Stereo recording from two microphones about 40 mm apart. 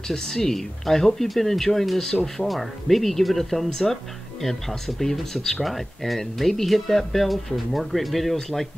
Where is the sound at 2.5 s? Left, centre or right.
Centre.